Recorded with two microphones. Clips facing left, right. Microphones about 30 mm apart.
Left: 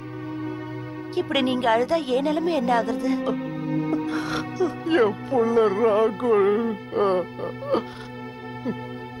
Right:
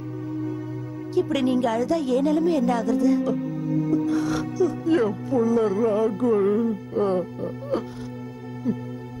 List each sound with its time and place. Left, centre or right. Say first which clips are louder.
0.3 s music: right 2 dB; left
1.1 s a woman's voice: right 1 dB; left